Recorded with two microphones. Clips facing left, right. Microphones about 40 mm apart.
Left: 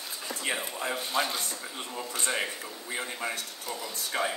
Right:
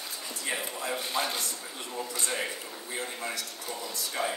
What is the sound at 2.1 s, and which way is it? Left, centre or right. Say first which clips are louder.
Speech: left 3 dB; left.